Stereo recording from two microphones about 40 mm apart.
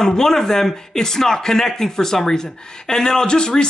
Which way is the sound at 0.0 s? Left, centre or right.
Centre.